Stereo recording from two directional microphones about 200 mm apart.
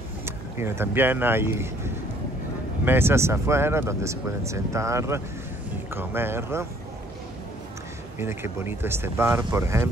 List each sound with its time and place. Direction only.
0.2 s speech: 10° right (ahead or behind)
8.2 s speech: 10° right (ahead or behind)